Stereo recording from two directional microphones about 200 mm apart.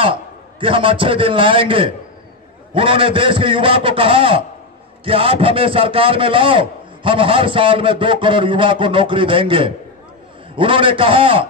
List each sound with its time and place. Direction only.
0.0 s a man's voice: 25° right (ahead or behind)